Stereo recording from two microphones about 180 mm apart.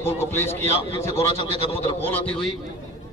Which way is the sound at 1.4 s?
30° left (ahead or behind).